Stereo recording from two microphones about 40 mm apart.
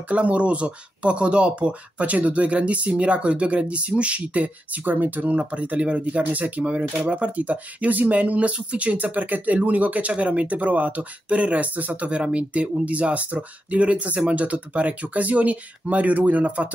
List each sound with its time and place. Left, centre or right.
0.1 s speech: right
4.8 s speech: right
5.3 s speech: right